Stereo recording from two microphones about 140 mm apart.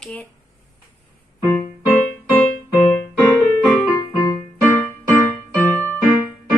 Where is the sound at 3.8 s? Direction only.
25° left (ahead or behind).